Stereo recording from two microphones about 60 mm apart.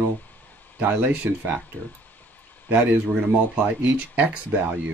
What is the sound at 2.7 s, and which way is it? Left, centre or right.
Speech, right.